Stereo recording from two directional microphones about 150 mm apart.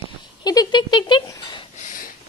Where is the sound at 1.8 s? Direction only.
60° left (ahead or behind).